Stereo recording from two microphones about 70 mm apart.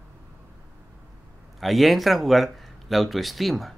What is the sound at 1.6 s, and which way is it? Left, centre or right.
A man's voice, centre.